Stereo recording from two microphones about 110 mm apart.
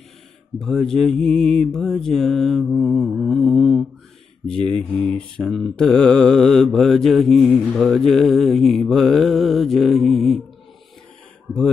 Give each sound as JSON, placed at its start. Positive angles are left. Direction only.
{"t": 0.7, "sound": "mantra", "side_deg": 5}